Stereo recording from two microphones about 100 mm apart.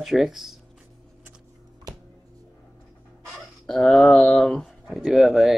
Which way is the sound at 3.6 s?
5° left (ahead or behind).